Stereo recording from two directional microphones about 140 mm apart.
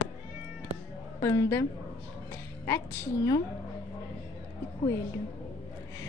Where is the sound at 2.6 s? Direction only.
20° left (ahead or behind).